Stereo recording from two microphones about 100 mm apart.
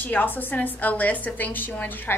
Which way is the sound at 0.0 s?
20° left (ahead or behind).